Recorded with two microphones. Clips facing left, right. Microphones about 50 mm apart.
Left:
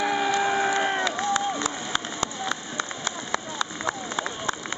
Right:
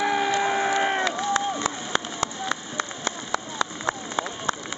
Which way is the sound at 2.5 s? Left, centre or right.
Right.